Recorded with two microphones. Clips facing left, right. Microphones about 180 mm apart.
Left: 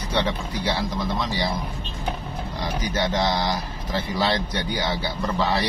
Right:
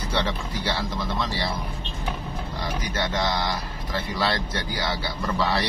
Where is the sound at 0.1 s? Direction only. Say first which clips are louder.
Left 3 dB; 15° left (ahead or behind).